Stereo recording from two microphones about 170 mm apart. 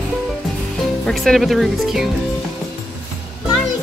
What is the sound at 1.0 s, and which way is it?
Speech, centre (ahead or behind).